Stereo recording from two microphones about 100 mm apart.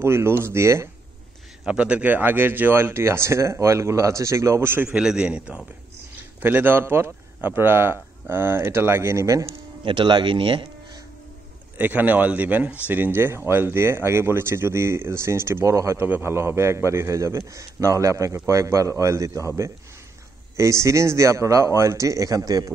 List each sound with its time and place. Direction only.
0.0 s speech: 25° right (ahead or behind)
1.7 s speech: 10° right (ahead or behind)
4.9 s a man's voice: 10° right (ahead or behind)
6.4 s speech: 20° right (ahead or behind)
9.5 s speech: 55° right (ahead or behind)
11.8 s a man's voice: 15° right (ahead or behind); by 22.7 s 40° right (ahead or behind)